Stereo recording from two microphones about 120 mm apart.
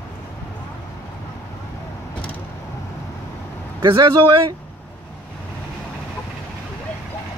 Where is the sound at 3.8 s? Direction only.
40° right (ahead or behind).